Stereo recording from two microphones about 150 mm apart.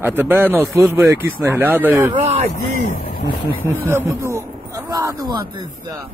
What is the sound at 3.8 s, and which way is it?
Speech, 15° right (ahead or behind).